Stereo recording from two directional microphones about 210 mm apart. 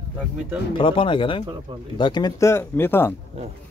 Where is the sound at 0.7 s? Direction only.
25° left (ahead or behind).